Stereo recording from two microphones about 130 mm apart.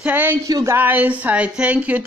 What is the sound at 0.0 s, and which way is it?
Speech, 15° right (ahead or behind).